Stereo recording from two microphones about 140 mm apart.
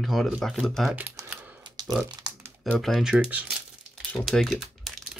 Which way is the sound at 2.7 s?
Centre (ahead or behind).